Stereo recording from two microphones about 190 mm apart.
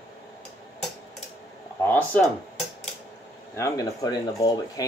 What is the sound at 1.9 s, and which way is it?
Speech, 10° left (ahead or behind).